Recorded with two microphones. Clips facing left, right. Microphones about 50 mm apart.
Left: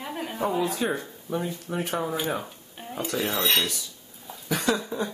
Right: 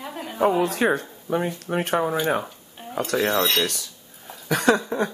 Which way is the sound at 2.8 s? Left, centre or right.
Centre.